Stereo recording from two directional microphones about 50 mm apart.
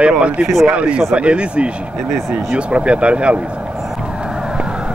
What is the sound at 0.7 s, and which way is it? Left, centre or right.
Speech, right.